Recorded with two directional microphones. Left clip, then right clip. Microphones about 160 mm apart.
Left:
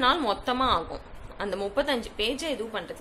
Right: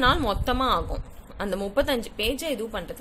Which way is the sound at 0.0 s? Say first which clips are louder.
Right 1 dB; 40° right (ahead or behind).